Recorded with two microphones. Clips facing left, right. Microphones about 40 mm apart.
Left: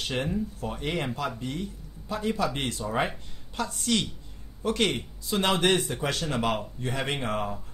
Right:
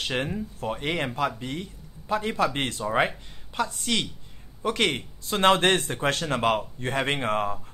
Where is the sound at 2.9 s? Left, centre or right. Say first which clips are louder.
Right 4 dB; right.